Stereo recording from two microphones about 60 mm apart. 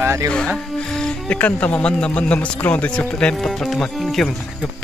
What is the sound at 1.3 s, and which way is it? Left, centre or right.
A man's voice, left.